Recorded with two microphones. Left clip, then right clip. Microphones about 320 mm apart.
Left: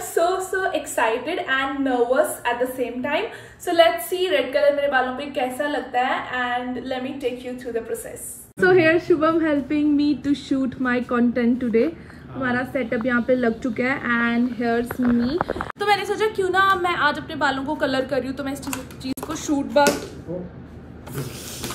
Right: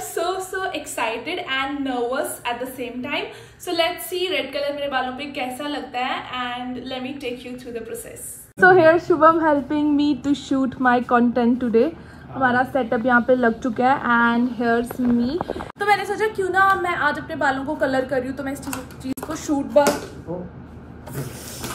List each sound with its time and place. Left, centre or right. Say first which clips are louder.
0.1 s a sound: left 4 dB; centre
0.5 s a woman's voice: left 3 dB; centre
14.8 s speech: even; centre
16.1 s a woman's voice: left 1 dB; centre